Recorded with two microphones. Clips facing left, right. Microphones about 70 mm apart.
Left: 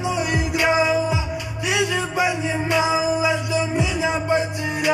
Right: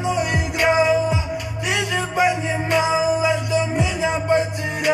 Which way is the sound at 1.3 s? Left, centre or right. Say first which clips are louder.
Even; right.